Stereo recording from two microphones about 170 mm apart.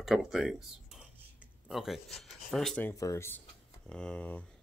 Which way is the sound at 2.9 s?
20° left (ahead or behind).